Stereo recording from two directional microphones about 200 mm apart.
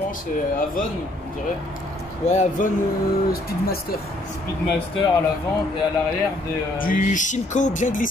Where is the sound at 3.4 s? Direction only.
50° left (ahead or behind).